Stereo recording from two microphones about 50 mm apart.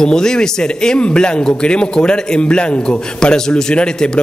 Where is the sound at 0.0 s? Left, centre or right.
Centre.